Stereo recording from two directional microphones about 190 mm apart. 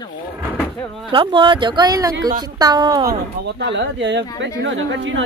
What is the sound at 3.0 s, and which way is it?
Speech, 65° right (ahead or behind).